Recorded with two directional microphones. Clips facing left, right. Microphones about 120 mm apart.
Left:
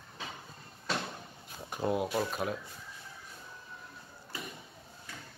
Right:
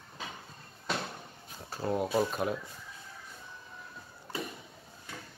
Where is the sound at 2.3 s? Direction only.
Centre (ahead or behind).